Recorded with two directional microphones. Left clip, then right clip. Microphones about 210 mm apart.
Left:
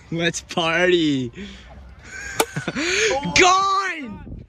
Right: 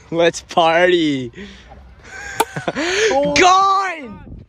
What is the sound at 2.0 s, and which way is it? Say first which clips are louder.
Fowl: right 3 dB; 5° right (ahead or behind).